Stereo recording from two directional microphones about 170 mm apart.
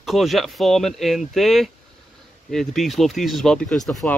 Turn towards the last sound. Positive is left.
turn(degrees=0)  # may be behind; listen again after turning